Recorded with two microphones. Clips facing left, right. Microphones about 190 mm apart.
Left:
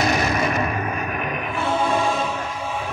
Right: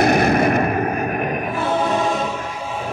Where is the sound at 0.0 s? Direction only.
55° right (ahead or behind); by 2.2 s 40° right (ahead or behind).